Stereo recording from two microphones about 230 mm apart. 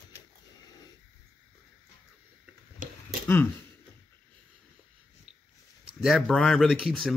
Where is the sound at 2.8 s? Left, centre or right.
Right.